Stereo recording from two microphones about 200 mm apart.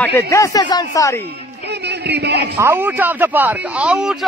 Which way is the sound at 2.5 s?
10° right (ahead or behind).